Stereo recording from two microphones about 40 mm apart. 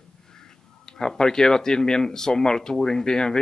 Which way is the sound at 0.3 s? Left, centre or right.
Centre.